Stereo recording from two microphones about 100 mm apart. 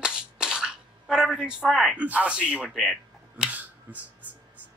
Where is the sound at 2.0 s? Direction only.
15° right (ahead or behind).